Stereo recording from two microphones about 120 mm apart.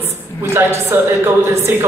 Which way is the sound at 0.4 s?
20° right (ahead or behind).